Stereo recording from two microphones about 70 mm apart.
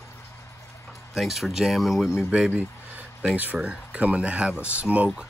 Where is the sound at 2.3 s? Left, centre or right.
Centre.